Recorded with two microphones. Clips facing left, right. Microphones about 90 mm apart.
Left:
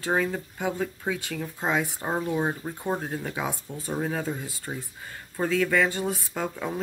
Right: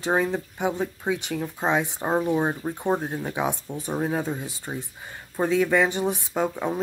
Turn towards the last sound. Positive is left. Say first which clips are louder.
# right 5 dB
turn(degrees=-20)  # may be behind; listen again after turning